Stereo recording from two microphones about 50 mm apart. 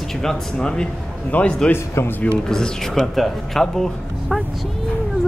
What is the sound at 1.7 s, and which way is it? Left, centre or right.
Speech, left.